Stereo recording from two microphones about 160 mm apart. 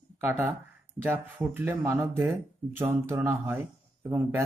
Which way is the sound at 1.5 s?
15° right (ahead or behind).